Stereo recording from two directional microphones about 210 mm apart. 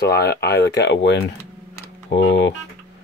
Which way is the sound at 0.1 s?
50° left (ahead or behind).